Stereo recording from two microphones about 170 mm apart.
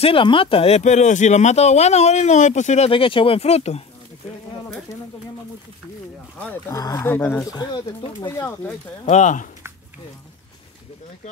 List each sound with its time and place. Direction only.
0.0 s speech: 30° left (ahead or behind)
6.7 s speech: 20° left (ahead or behind)
7.5 s speech: 25° left (ahead or behind)
8.4 s speech: 10° left (ahead or behind)
9.0 s speech: 45° left (ahead or behind)